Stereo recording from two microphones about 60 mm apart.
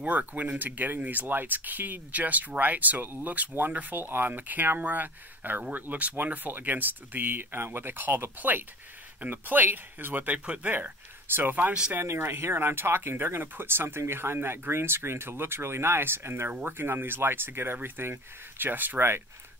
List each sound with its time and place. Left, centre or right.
0.0 s speech: right
11.3 s speech: right
11.7 s speech: centre
12.0 s speech: right